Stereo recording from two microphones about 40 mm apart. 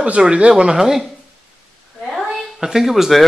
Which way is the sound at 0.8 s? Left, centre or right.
Centre.